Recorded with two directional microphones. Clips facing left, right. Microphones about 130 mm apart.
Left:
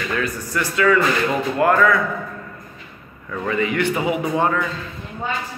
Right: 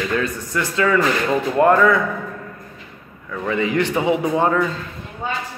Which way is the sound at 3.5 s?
25° right (ahead or behind).